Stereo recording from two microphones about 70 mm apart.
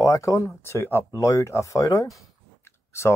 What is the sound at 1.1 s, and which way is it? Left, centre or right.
Speech, left.